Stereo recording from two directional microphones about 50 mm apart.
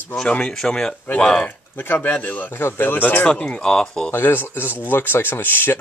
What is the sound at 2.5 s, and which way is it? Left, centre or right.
Speech, left.